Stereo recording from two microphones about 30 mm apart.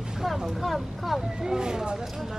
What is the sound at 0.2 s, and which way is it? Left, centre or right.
Speech, centre.